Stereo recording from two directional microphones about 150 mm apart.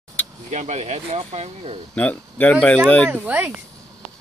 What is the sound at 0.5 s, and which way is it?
Speech, 50° right (ahead or behind).